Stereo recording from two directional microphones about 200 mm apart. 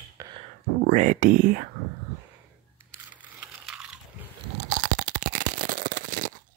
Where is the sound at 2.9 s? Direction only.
10° right (ahead or behind).